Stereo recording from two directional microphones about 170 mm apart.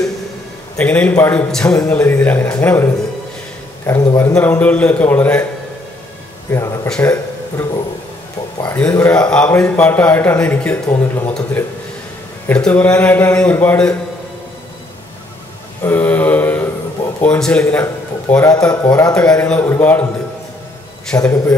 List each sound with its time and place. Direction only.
0.7 s a man's voice: 10° left (ahead or behind)
6.5 s a man's voice: 15° left (ahead or behind)
15.8 s mantra: 10° left (ahead or behind)
17.2 s a man's voice: 5° left (ahead or behind)
21.2 s speech: 20° left (ahead or behind)